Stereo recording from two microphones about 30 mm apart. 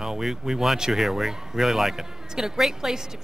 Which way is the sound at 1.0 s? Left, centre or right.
Centre.